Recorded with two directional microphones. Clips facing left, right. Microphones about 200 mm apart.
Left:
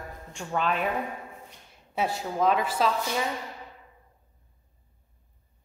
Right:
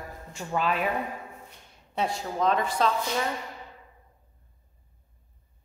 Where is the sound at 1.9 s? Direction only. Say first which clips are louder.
Left 1 dB; 5° left (ahead or behind).